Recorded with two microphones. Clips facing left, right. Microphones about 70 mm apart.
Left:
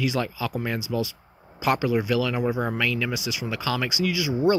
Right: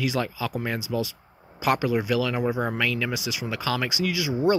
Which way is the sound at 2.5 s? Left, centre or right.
Centre.